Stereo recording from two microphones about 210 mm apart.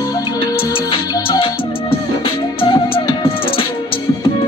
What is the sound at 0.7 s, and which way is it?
Music, 25° left (ahead or behind).